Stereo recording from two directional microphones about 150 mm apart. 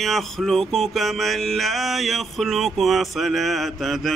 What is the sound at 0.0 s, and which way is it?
Mantra, centre (ahead or behind).